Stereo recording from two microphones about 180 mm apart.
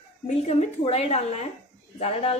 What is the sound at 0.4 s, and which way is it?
A woman's voice, 35° left (ahead or behind).